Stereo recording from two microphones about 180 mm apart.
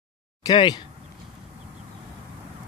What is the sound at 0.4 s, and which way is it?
Speech, 25° left (ahead or behind).